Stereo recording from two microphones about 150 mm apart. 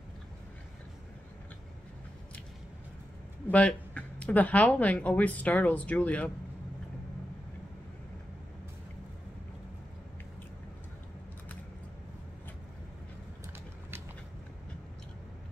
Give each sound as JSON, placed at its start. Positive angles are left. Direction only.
{"t": 3.5, "sound": "speech", "side_deg": 10}